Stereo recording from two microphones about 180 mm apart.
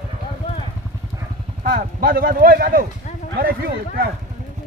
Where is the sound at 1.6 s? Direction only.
50° right (ahead or behind).